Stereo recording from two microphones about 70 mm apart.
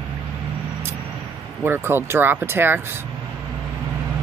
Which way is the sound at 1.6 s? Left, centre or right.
Right.